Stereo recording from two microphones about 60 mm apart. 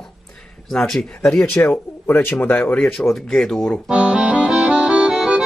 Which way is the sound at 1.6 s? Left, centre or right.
Left.